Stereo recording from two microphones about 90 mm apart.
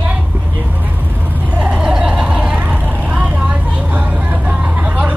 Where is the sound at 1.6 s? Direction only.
10° right (ahead or behind).